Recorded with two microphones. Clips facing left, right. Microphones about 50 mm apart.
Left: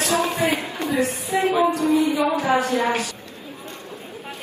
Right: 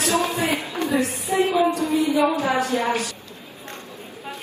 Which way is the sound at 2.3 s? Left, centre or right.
Left.